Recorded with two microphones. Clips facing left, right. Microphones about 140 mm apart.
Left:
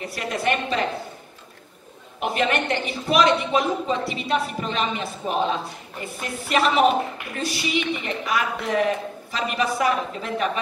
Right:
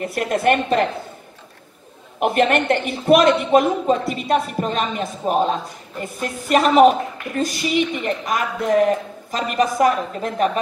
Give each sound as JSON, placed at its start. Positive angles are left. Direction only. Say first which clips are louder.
{"t": 0.0, "sound": "speech", "louder": "right 6 dB", "side_deg": -55}
{"t": 2.1, "sound": "speech", "louder": "right 6 dB", "side_deg": -55}